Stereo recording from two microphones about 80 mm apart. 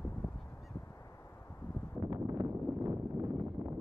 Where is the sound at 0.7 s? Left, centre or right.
Left.